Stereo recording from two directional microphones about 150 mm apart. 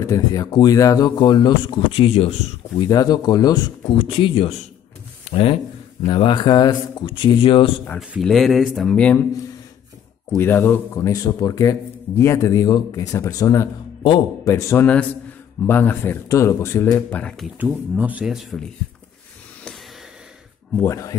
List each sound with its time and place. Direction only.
0.0 s speech: 25° left (ahead or behind)
2.9 s speech: 25° left (ahead or behind)
8.0 s speech: centre (ahead or behind)
10.3 s speech: 15° left (ahead or behind)
14.0 s speech: 35° left (ahead or behind)
14.5 s speech: 15° left (ahead or behind)
17.6 s speech: 10° right (ahead or behind)
20.8 s speech: 20° left (ahead or behind)